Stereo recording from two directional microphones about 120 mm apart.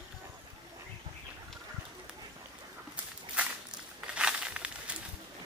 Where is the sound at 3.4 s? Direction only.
10° right (ahead or behind).